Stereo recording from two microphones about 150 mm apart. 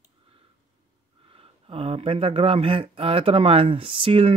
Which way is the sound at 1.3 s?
40° right (ahead or behind).